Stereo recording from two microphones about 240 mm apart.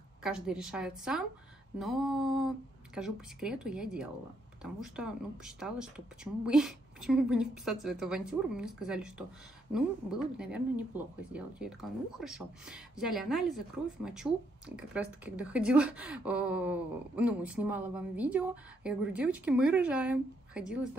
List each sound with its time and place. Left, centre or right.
0.2 s speech: centre